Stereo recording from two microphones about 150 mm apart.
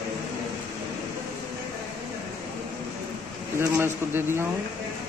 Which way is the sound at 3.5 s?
15° right (ahead or behind).